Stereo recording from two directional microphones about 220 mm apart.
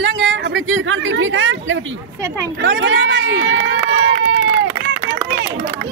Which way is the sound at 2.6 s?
60° right (ahead or behind).